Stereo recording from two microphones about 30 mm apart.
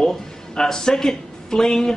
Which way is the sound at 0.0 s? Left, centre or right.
Centre.